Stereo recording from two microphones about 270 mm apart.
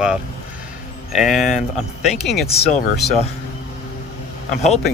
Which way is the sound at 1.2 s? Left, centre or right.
Centre.